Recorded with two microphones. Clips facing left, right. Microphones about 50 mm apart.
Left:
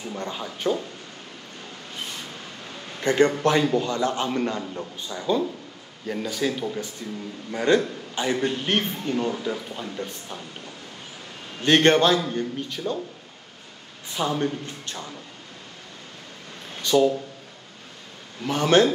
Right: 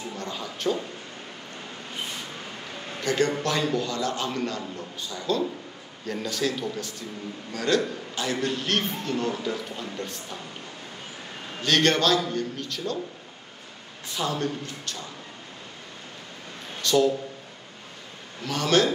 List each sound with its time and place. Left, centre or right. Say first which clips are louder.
0.1 s a man's voice: left 2 dB; centre
3.0 s a man's voice: left 5 dB; left
9.3 s speech: left 1 dB; centre
11.6 s a man's voice: left 4 dB; left
14.1 s a man's voice: left 3 dB; left
16.8 s speech: left 2 dB; centre
18.4 s a man's voice: left 4 dB; left